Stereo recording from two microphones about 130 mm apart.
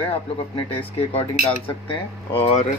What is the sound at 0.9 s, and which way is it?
Speech, 50° left (ahead or behind).